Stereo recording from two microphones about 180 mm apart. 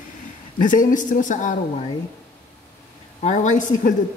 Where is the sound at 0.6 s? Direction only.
45° left (ahead or behind).